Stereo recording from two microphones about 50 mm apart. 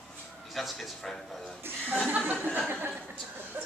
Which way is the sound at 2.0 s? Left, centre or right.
Right.